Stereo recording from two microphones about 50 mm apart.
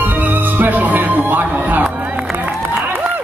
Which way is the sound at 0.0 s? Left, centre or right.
Right.